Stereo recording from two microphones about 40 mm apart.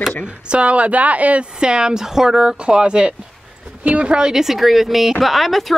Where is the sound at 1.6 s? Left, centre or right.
Right.